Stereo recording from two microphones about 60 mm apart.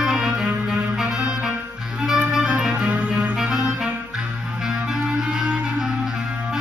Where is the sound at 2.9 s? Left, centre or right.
Right.